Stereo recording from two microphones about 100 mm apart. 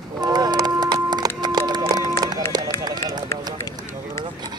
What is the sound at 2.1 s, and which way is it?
Run, 40° right (ahead or behind).